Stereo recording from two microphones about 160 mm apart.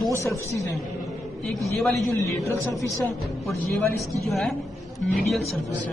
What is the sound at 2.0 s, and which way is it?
Speech, 20° left (ahead or behind).